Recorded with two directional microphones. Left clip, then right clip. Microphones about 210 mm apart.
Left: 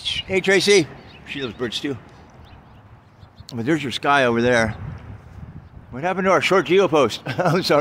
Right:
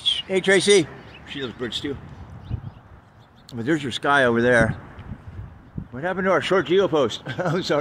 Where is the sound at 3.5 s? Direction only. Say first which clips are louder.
Left 2 dB; 10° left (ahead or behind).